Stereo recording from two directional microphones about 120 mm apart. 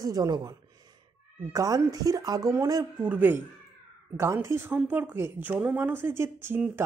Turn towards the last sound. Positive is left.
turn(degrees=-20)  # may be behind; listen again after turning